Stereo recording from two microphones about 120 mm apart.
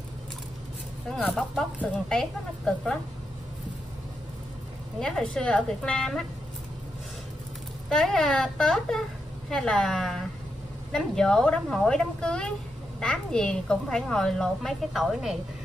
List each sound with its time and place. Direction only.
1.3 s a woman's voice: centre (ahead or behind)
5.0 s a woman's voice: 5° left (ahead or behind)
7.9 s a woman's voice: centre (ahead or behind)